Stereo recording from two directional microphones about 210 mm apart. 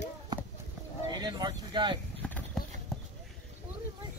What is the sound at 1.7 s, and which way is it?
Speech, 20° right (ahead or behind).